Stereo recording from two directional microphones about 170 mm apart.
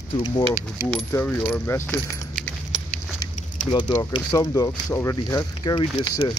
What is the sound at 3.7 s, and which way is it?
Speech, 25° left (ahead or behind).